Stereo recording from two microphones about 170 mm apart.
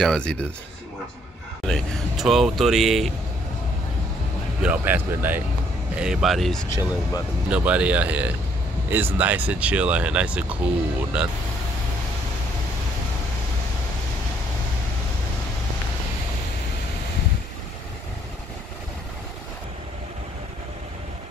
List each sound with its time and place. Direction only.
0.0 s speech: 5° left (ahead or behind)
1.7 s speech: centre (ahead or behind)
4.6 s speech: 10° right (ahead or behind)
6.7 s speech: 20° left (ahead or behind)
7.4 s speech: 5° right (ahead or behind)